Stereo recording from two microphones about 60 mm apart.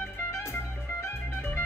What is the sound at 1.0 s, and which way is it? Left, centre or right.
Music, left.